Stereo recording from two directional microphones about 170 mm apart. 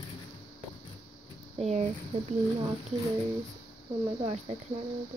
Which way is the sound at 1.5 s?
40° right (ahead or behind).